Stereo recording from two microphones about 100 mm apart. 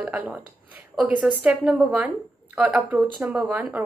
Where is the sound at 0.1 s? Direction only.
15° right (ahead or behind).